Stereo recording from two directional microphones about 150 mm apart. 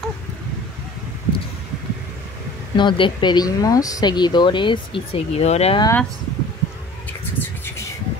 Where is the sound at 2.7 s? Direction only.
30° left (ahead or behind).